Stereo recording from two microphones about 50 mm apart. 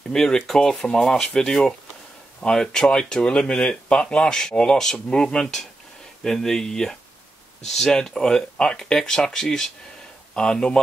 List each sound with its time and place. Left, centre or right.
0.1 s speech: centre